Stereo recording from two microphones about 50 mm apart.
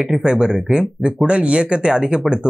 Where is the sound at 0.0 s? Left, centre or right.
Centre.